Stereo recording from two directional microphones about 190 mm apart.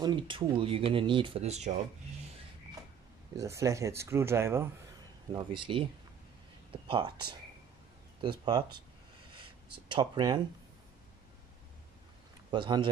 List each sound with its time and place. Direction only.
0.0 s speech: 25° right (ahead or behind)
3.3 s speech: 15° right (ahead or behind)
5.3 s speech: 25° right (ahead or behind)
9.3 s a sound: 25° right (ahead or behind)
12.4 s speech: 25° right (ahead or behind)